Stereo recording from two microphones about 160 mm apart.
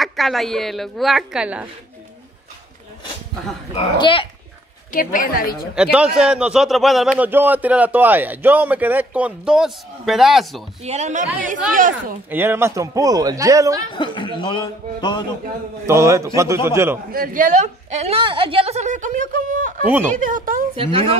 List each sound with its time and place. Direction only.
0.0 s speech: centre (ahead or behind)
3.7 s speech: 35° left (ahead or behind)
4.9 s a woman's voice: 60° left (ahead or behind)
5.8 s a man's voice: 5° right (ahead or behind)
10.8 s a woman's voice: 45° right (ahead or behind)
12.3 s speech: 15° right (ahead or behind)
13.9 s a man's voice: 30° left (ahead or behind)
15.9 s a man's voice: 20° right (ahead or behind)
17.1 s a woman's voice: 60° right (ahead or behind)
20.7 s speech: 35° right (ahead or behind)